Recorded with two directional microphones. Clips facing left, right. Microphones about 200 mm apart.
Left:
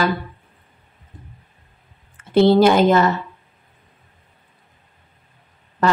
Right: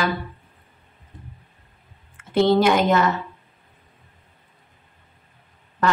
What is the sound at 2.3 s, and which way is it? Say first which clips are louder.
Speech: left 4 dB; 30° left (ahead or behind).